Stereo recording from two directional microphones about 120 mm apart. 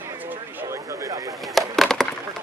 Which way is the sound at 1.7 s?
Centre (ahead or behind).